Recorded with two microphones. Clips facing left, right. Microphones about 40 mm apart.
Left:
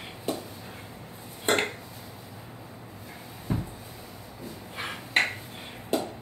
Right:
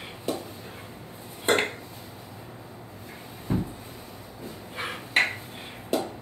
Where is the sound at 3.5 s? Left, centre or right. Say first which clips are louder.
Right 3 dB; right.